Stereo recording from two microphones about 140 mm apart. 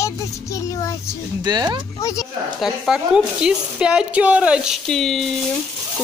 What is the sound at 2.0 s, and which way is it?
Speech, 20° left (ahead or behind).